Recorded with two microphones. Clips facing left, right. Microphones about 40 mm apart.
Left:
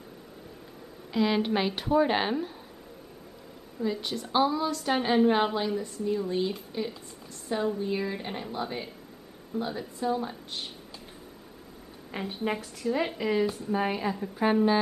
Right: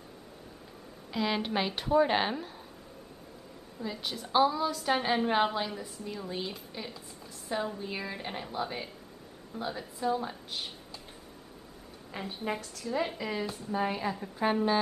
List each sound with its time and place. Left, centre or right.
1.1 s a woman's voice: centre
3.8 s a woman's voice: centre
12.1 s a woman's voice: centre
13.9 s a woman's voice: centre